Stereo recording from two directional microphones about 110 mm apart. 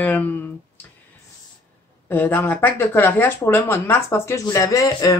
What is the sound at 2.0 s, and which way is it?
Speech, 15° left (ahead or behind).